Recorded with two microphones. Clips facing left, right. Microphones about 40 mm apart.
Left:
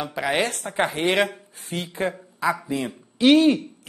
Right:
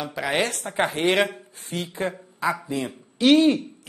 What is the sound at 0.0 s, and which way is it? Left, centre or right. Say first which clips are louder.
Speech: left 1 dB; centre.